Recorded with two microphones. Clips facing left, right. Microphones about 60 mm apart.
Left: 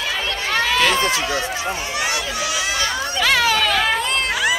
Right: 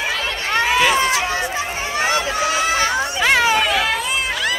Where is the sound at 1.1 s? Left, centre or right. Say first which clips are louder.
Right 2 dB; right.